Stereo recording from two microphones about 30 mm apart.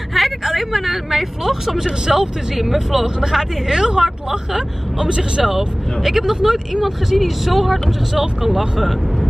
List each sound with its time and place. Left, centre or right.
0.1 s speech: centre